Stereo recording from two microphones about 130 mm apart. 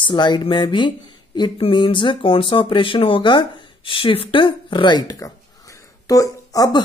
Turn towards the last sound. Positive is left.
turn(degrees=30)  # may be behind; listen again after turning